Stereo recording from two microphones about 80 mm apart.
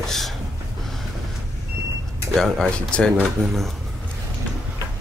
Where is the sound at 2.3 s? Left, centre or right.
Centre.